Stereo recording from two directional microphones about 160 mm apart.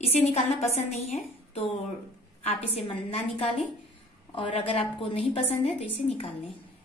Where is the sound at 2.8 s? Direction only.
35° left (ahead or behind).